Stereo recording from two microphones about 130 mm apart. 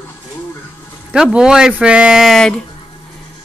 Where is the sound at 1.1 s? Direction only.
5° right (ahead or behind).